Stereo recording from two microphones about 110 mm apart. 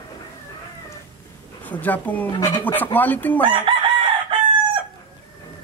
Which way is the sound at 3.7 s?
50° right (ahead or behind).